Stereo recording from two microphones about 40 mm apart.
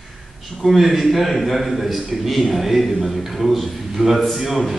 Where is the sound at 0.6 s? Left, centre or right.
Centre.